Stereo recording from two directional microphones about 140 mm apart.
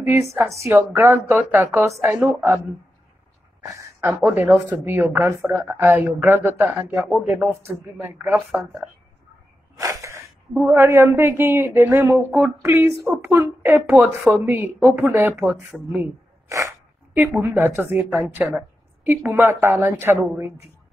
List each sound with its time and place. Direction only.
0.0 s a woman's voice: 20° right (ahead or behind)
3.6 s a woman's voice: 20° right (ahead or behind)
8.3 s speech: centre (ahead or behind)
9.8 s a woman's voice: 20° right (ahead or behind); by 14.3 s 5° right (ahead or behind)
14.3 s a woman's voice: 15° right (ahead or behind)
15.4 s a woman's voice: 5° right (ahead or behind)
16.4 s a woman's voice: 20° right (ahead or behind)